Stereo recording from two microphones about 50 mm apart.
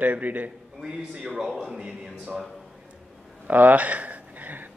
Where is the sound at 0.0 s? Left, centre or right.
Right.